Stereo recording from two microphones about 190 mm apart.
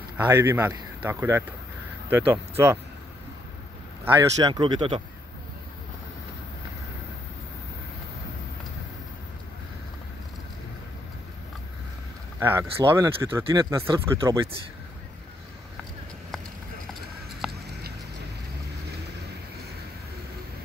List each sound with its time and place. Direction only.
0.2 s speech: 10° right (ahead or behind)
4.0 s speech: 20° right (ahead or behind)
12.4 s speech: 10° right (ahead or behind)
17.4 s a sound: centre (ahead or behind)